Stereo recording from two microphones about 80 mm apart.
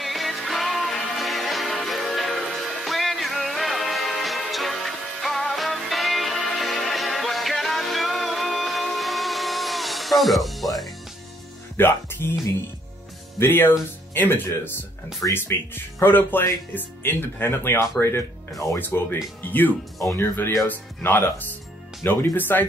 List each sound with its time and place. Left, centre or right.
0.0 s music: centre
11.7 s speech: left
13.4 s speech: left
20.0 s speech: left
20.6 s speech: left